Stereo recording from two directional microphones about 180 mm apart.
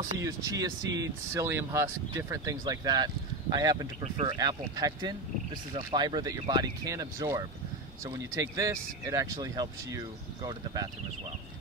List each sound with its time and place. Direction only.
0.0 s speech: 20° right (ahead or behind)
4.0 s speech: 35° right (ahead or behind)
4.4 s speech: 20° right (ahead or behind)